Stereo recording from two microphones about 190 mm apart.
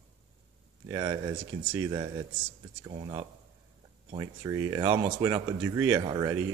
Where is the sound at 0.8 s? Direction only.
20° right (ahead or behind).